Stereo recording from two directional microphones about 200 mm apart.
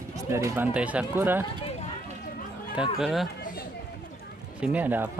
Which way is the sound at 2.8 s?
Centre (ahead or behind).